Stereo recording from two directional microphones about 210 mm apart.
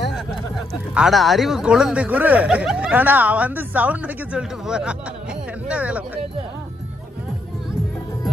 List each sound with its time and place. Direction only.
0.9 s speech: centre (ahead or behind)